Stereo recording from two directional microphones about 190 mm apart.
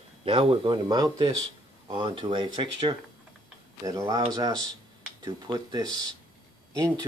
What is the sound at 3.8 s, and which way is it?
Speech, 20° right (ahead or behind).